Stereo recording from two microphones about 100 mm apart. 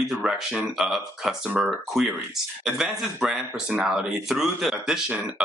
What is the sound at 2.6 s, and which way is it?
Speech, 5° right (ahead or behind).